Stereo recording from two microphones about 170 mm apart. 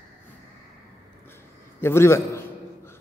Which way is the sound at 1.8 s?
15° left (ahead or behind).